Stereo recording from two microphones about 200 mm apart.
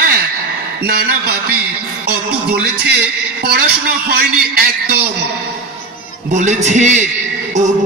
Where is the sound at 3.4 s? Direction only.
50° right (ahead or behind).